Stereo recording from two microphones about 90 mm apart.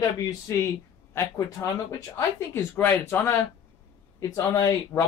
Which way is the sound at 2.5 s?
20° left (ahead or behind).